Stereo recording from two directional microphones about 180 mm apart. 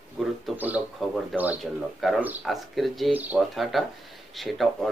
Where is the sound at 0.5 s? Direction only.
10° right (ahead or behind).